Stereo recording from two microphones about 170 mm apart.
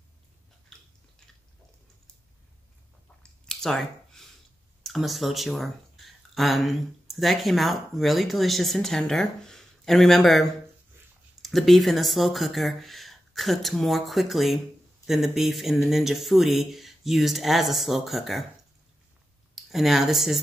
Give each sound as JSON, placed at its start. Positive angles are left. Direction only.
{"t": 0.7, "sound": "biting", "side_deg": 0}
{"t": 3.2, "sound": "a sound", "side_deg": 5}
{"t": 4.8, "sound": "speech", "side_deg": 0}
{"t": 19.5, "sound": "speech", "side_deg": 0}